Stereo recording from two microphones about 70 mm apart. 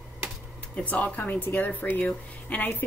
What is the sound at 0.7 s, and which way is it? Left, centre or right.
A woman's voice, left.